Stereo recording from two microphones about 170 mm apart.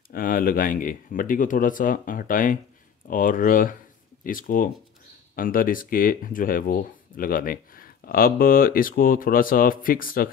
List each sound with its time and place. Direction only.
0.1 s speech: 55° left (ahead or behind)